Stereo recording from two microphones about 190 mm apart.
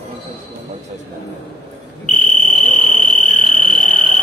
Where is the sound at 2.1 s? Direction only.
45° left (ahead or behind).